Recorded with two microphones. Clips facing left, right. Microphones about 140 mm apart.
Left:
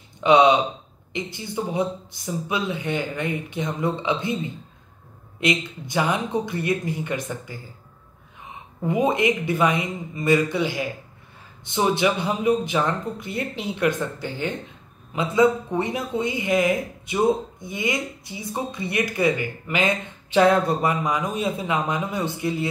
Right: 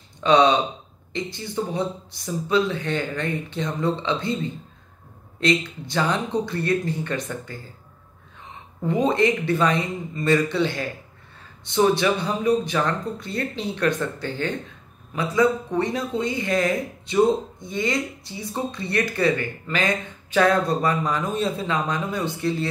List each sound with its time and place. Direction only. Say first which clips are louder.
0.2 s speech: left 1 dB; 20° left (ahead or behind)
8.8 s speech: right 1 dB; 15° left (ahead or behind)
12.0 s speech: even; 20° left (ahead or behind)
21.0 s a man's voice: even; centre (ahead or behind)
21.5 s speech: left 1 dB; 20° left (ahead or behind)